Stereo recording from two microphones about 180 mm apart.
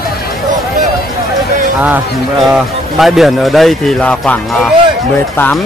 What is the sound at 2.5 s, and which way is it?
Speech, centre (ahead or behind).